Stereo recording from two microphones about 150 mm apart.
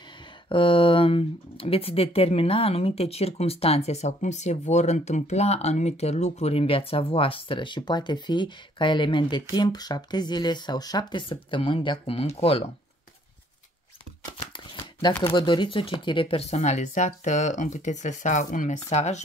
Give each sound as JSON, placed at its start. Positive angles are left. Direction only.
{"t": 0.5, "sound": "speech", "side_deg": 35}
{"t": 15.2, "sound": "speech", "side_deg": 30}